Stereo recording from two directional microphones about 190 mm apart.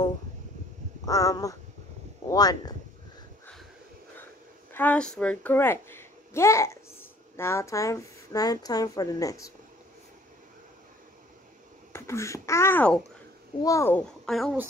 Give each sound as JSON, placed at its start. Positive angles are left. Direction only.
{"t": 1.0, "sound": "speech", "side_deg": 20}
{"t": 4.7, "sound": "a child's voice", "side_deg": 5}
{"t": 11.9, "sound": "speech", "side_deg": 15}